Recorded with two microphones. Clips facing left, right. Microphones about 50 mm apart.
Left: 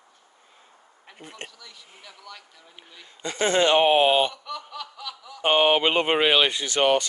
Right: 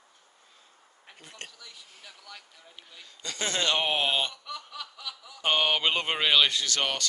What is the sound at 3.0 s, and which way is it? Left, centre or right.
Speech, left.